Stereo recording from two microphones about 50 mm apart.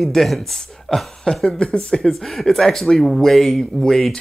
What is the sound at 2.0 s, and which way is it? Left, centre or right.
Speech, centre.